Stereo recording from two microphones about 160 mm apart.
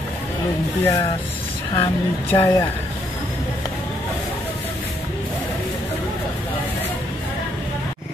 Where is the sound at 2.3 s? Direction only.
20° left (ahead or behind).